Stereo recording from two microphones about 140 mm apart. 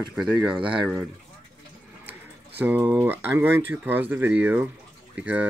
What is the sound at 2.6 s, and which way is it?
Speech, 10° right (ahead or behind).